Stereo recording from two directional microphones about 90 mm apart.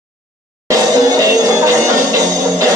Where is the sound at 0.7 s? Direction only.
45° right (ahead or behind).